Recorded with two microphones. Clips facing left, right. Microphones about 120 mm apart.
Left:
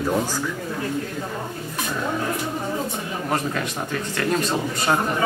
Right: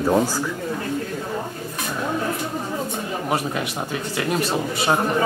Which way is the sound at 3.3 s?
15° right (ahead or behind).